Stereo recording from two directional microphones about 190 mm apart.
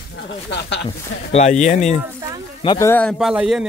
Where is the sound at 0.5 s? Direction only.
65° left (ahead or behind).